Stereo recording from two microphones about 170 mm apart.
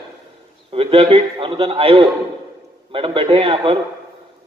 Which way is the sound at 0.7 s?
35° right (ahead or behind).